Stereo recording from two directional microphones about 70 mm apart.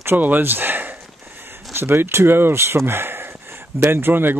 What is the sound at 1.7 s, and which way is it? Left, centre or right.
Speech, right.